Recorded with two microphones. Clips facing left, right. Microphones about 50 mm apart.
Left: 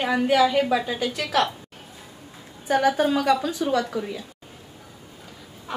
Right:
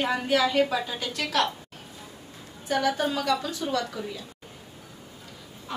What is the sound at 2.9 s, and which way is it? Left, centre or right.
A woman's voice, centre.